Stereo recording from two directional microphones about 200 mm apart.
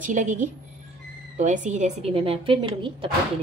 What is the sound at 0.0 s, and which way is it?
A woman's voice, 40° right (ahead or behind).